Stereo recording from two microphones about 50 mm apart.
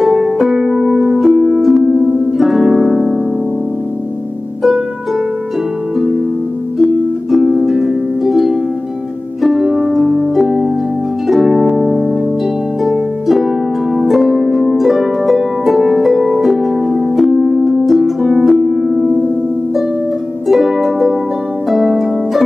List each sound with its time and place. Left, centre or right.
0.4 s music: centre
2.0 s harp: centre
2.6 s music: centre
6.8 s music: centre
9.9 s harp: centre
13.9 s harp: centre
20.4 s music: centre
21.6 s harp: centre